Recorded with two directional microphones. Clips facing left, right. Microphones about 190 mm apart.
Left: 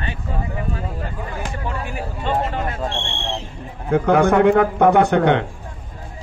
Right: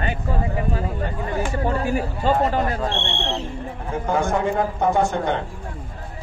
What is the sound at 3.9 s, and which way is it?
A man's voice, 65° left (ahead or behind).